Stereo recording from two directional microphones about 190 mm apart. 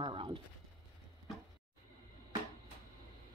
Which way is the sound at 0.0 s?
25° right (ahead or behind).